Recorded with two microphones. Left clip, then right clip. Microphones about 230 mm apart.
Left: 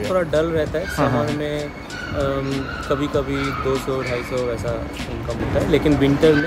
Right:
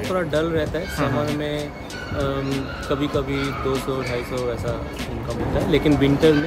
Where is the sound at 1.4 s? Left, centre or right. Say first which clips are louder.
Left 1 dB; centre.